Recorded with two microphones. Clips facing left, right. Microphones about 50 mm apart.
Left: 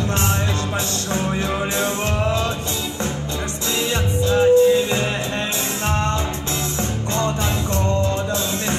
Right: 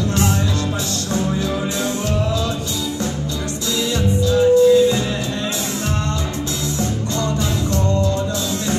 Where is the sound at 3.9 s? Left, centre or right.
Left.